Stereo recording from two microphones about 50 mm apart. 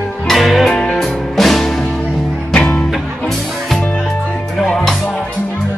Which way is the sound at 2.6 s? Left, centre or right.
Left.